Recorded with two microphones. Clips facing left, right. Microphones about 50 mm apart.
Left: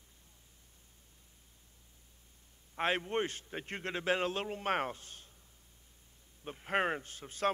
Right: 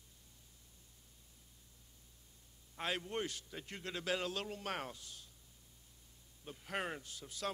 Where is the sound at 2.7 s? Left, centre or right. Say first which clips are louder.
Left 7 dB; left.